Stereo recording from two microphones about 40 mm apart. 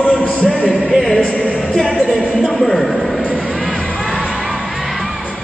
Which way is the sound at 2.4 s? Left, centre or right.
Centre.